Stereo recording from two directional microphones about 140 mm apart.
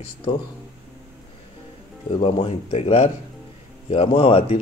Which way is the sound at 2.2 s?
45° left (ahead or behind).